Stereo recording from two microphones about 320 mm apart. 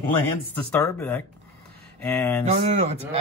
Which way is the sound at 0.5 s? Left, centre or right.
Centre.